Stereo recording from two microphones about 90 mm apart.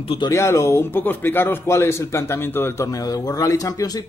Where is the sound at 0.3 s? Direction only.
30° left (ahead or behind).